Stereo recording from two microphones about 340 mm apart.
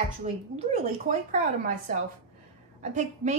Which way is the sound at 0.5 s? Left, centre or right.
Centre.